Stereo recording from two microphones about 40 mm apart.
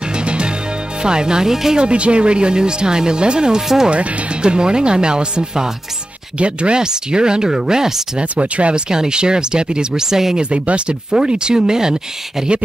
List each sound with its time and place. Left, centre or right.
0.1 s music: right
1.0 s speech: centre
1.8 s speech: right
3.9 s speech: right
8.2 s speech: right; by 10.4 s centre
10.4 s speech: right